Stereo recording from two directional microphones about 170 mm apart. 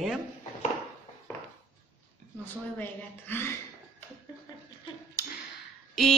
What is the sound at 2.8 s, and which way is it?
Speech, 10° left (ahead or behind).